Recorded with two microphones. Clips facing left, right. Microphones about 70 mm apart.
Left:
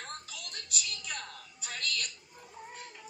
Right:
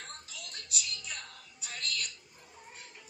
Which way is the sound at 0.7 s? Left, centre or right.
Left.